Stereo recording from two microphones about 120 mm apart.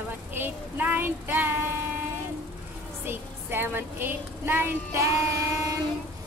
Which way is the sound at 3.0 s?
15° right (ahead or behind).